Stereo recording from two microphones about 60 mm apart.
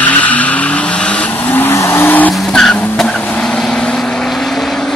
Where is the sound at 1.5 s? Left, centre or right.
Left.